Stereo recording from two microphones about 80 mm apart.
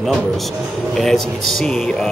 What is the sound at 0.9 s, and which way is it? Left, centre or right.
Speech, centre.